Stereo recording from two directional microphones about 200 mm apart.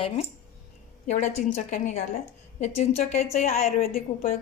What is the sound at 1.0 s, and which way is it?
A woman's voice, 35° left (ahead or behind).